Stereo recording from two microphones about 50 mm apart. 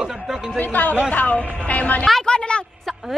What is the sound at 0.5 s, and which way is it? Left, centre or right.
A woman's voice, left.